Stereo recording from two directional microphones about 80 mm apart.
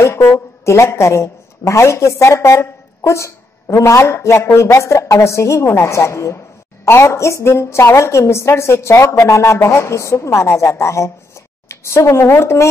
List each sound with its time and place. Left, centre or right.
0.0 s a woman's voice: left